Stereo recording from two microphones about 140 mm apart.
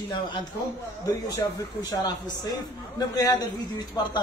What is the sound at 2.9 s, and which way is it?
Speech, 25° left (ahead or behind).